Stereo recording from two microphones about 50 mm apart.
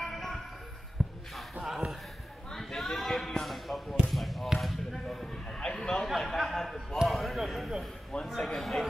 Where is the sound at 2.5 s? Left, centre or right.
Centre.